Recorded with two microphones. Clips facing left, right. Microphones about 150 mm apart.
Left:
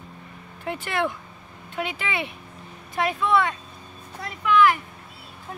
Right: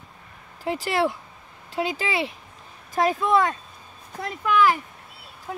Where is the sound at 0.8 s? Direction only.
35° right (ahead or behind).